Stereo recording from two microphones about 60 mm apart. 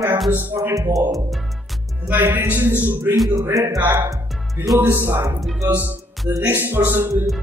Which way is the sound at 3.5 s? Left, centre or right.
Right.